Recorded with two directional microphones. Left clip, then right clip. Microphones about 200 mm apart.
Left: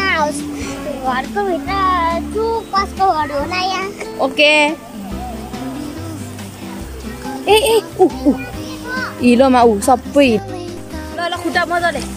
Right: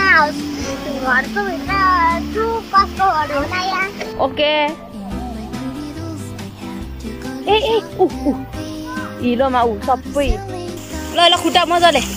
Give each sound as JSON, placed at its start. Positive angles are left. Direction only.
{"t": 0.0, "sound": "music", "side_deg": 15}
{"t": 1.0, "sound": "a child's voice", "side_deg": 25}
{"t": 4.2, "sound": "speech", "side_deg": 10}
{"t": 7.2, "sound": "speech", "side_deg": 0}